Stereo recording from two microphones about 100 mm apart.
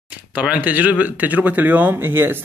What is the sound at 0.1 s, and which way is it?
Speech, 15° right (ahead or behind).